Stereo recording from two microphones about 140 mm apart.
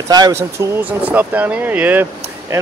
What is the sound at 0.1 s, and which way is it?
Speech, 25° right (ahead or behind).